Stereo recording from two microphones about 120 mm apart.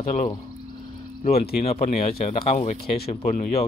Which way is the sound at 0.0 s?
70° left (ahead or behind).